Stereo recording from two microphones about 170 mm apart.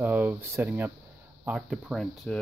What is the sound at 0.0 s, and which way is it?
Speech, 10° right (ahead or behind).